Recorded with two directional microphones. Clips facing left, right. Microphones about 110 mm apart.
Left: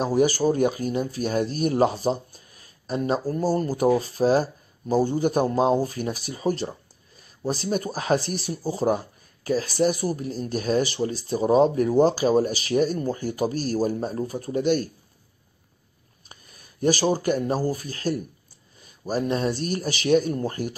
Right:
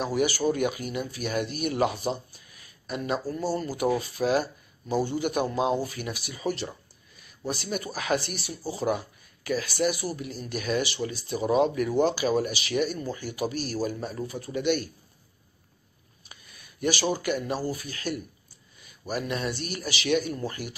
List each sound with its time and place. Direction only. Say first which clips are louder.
0.0 s speech: left 5 dB; 40° left (ahead or behind)
16.3 s a sound: left 2 dB; 40° left (ahead or behind)
17.1 s speech: left 5 dB; 40° left (ahead or behind)